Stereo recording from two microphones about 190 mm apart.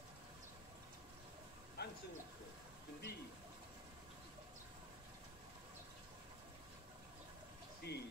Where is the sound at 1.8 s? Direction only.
60° left (ahead or behind).